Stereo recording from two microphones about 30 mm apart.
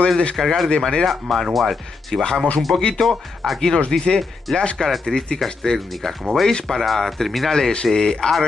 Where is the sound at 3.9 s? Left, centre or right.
Centre.